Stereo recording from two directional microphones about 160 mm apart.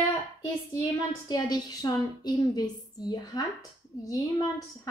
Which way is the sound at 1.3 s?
25° left (ahead or behind).